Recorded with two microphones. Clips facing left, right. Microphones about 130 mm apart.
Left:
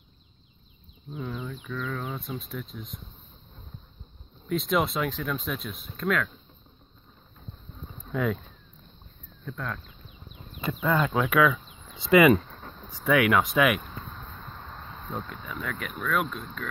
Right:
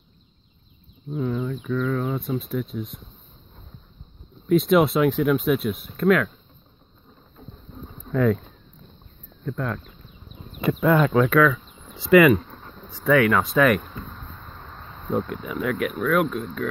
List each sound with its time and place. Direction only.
1.1 s speech: 5° right (ahead or behind)
4.5 s speech: 5° right (ahead or behind)
8.1 s speech: 10° left (ahead or behind)
9.5 s speech: 5° right (ahead or behind)
11.1 s a sound: 5° left (ahead or behind)
12.0 s speech: 20° left (ahead or behind)
15.1 s speech: 10° right (ahead or behind)